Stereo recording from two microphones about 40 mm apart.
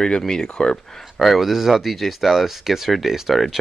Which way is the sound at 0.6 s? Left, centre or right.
Centre.